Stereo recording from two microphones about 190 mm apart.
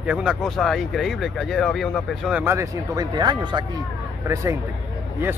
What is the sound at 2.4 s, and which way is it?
Speech, 15° right (ahead or behind).